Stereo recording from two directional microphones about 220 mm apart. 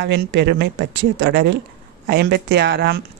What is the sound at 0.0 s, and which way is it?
Speech, 50° right (ahead or behind).